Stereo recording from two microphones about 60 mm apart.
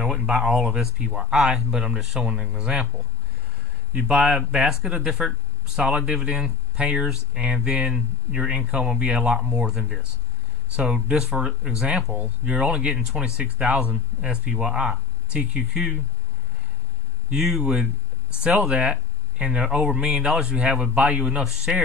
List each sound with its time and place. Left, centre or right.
0.0 s a sound: centre
0.3 s speech: centre
3.9 s speech: centre
12.1 s speech: right
17.4 s speech: centre
21.5 s speech: centre